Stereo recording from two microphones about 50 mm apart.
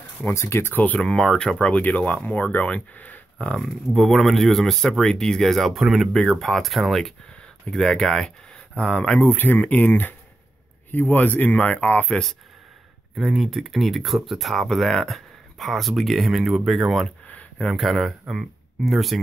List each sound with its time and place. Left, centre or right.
0.3 s speech: left
0.9 s speech: centre
1.6 s speech: left
3.5 s speech: centre
8.7 s speech: left
9.2 s speech: left
13.1 s speech: centre
17.3 s a sound: left
17.6 s speech: centre